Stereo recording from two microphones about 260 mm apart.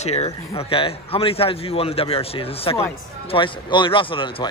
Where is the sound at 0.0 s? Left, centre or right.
Left.